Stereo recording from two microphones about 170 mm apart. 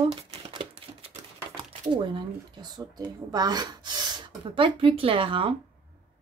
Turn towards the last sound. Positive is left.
turn(degrees=-30)  # may be behind; listen again after turning